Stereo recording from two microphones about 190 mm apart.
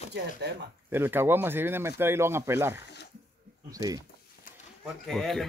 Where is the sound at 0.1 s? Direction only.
60° right (ahead or behind).